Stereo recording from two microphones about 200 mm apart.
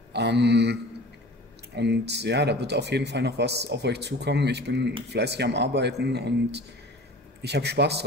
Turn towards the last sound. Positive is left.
turn(degrees=-55)  # may be behind; listen again after turning